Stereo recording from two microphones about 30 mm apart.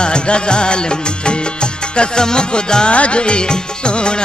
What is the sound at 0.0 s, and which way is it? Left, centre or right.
Music, left.